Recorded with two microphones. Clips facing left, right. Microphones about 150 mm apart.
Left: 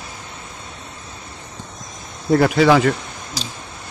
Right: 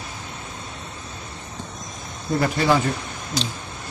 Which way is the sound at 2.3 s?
90° left.